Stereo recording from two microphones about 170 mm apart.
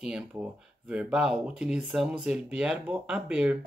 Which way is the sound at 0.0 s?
5° right (ahead or behind).